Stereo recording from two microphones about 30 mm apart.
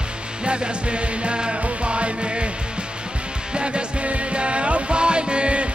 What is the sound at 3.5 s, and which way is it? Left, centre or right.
Music, right.